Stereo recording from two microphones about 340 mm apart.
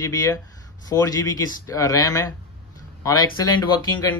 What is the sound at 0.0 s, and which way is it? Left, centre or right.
Speech, centre.